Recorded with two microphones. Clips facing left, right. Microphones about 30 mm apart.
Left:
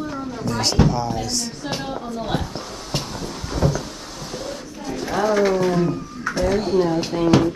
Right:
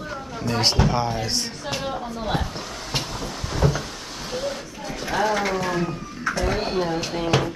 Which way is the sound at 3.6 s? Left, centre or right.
Right.